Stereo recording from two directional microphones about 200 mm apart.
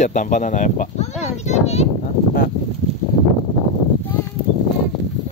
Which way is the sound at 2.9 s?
30° right (ahead or behind).